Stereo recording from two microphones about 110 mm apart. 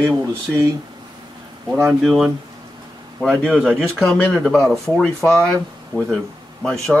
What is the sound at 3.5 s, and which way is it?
Speech, 15° right (ahead or behind).